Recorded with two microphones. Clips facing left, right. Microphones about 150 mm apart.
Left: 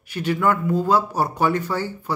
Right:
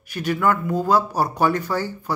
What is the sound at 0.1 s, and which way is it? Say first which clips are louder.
Speech: even; 25° left (ahead or behind).